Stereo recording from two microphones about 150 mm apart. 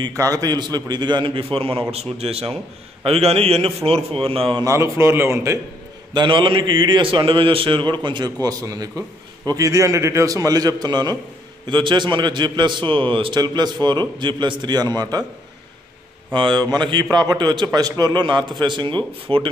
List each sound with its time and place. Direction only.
0.0 s a man's voice: 20° right (ahead or behind); by 4.6 s 35° right (ahead or behind)
4.6 s a man's voice: 20° right (ahead or behind)
6.1 s a man's voice: 35° right (ahead or behind)
16.3 s a man's voice: 30° right (ahead or behind)